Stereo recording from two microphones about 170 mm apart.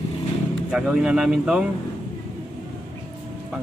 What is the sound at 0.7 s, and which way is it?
Speech, 5° right (ahead or behind).